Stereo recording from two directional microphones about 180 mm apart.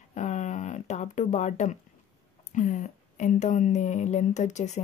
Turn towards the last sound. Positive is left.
turn(degrees=40)  # may be behind; listen again after turning